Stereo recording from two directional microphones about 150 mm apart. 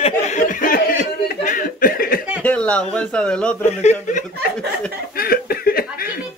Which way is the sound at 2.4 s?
10° left (ahead or behind).